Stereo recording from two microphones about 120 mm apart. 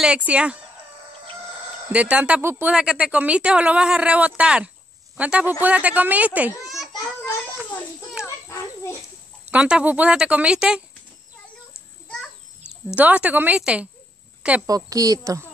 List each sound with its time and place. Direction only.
0.0 s a woman's voice: 10° right (ahead or behind)
1.9 s a woman's voice: 10° right (ahead or behind)
6.7 s a sound: centre (ahead or behind)
8.5 s children playing: 20° left (ahead or behind)
9.5 s a woman's voice: 10° right (ahead or behind)
12.8 s a woman's voice: 10° right (ahead or behind)
14.7 s a woman's voice: 30° right (ahead or behind)